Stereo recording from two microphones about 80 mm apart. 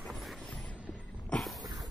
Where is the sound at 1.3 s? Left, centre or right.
Centre.